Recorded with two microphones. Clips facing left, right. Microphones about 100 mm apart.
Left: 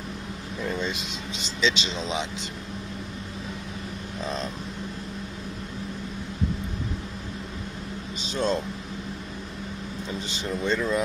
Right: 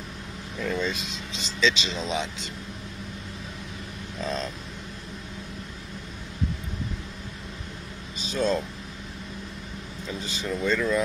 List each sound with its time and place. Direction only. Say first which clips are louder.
0.6 s vehicle: right 1 dB; 15° left (ahead or behind)
1.6 s speech: right 1 dB; 25° left (ahead or behind)
8.2 s speech: right 1 dB; 30° left (ahead or behind)
10.3 s speech: right 1 dB; 25° left (ahead or behind)